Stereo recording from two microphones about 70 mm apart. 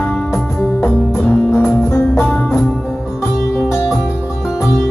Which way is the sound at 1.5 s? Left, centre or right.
Left.